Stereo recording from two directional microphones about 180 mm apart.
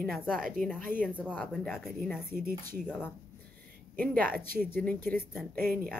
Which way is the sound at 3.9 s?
5° left (ahead or behind).